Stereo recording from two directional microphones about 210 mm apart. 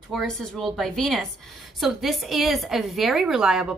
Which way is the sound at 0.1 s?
Centre (ahead or behind).